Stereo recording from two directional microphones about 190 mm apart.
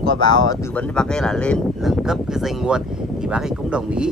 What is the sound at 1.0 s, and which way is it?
Speech, 5° left (ahead or behind).